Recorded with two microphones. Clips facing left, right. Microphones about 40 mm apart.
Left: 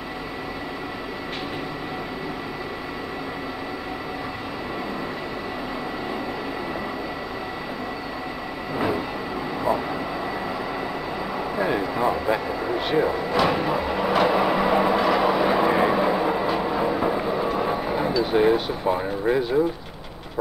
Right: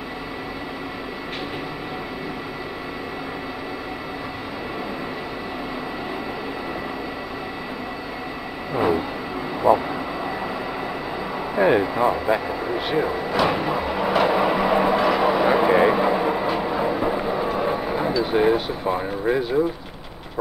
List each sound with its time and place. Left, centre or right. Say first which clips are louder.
8.7 s vehicle: right 4 dB; centre
11.5 s vehicle: right 7 dB; right
11.8 s vehicle: right 2 dB; centre